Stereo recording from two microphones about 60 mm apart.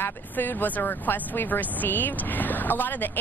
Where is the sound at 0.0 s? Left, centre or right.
Left.